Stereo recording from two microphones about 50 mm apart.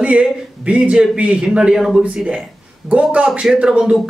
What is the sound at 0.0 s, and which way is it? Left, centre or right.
A man's voice, right.